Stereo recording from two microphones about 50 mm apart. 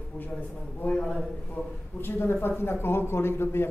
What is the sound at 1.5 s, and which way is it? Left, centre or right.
A man's voice, left.